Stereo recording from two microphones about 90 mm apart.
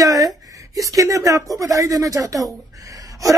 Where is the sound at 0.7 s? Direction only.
40° right (ahead or behind).